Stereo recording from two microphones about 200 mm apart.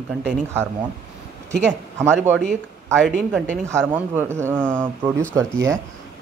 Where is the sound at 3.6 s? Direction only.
10° right (ahead or behind).